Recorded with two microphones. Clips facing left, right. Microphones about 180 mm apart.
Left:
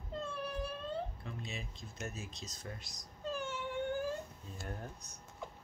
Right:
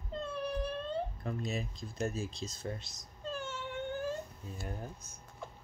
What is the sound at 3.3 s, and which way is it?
Whimper, 15° left (ahead or behind).